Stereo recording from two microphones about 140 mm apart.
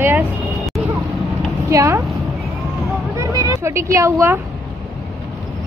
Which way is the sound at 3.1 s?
25° right (ahead or behind).